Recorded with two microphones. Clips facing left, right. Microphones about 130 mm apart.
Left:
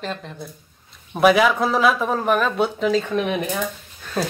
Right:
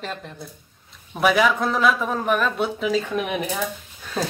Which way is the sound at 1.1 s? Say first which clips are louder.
Left 3 dB; 5° left (ahead or behind).